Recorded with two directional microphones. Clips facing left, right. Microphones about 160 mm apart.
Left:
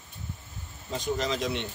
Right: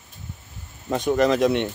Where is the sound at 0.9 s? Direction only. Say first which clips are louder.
Right 10 dB; 60° right (ahead or behind).